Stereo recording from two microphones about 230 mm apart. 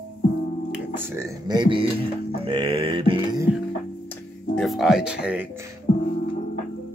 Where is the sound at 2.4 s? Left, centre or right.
Right.